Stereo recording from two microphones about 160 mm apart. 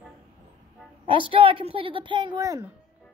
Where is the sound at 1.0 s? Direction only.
35° right (ahead or behind).